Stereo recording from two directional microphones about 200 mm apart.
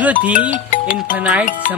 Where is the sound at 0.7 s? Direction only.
40° left (ahead or behind).